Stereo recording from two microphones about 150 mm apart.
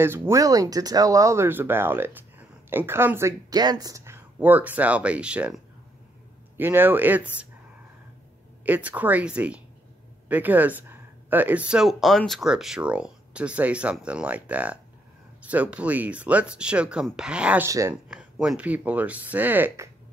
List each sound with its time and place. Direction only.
0.0 s speech: 15° right (ahead or behind)
8.6 s speech: 10° right (ahead or behind)
17.6 s speech: 20° right (ahead or behind)
18.0 s speech: 5° right (ahead or behind)